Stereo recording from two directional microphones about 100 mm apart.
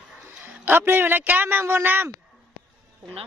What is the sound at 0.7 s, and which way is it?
A man's voice, 20° right (ahead or behind).